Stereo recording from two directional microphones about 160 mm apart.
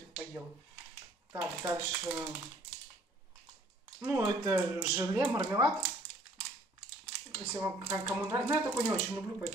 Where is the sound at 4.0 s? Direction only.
15° right (ahead or behind).